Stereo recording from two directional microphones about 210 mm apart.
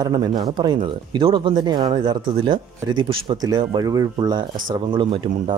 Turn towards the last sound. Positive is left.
turn(degrees=-25)  # may be behind; listen again after turning